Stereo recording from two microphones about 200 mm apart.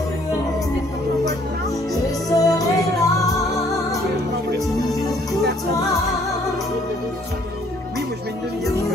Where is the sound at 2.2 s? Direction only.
15° left (ahead or behind).